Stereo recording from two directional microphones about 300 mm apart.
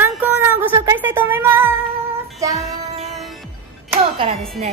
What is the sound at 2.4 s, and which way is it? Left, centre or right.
Music, centre.